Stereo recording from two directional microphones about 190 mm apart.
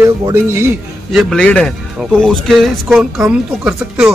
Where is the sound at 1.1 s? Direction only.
Centre (ahead or behind).